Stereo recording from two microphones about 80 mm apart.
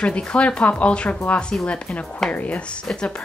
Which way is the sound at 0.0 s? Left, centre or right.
Centre.